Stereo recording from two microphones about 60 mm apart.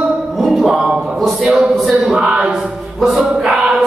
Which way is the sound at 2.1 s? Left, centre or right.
Centre.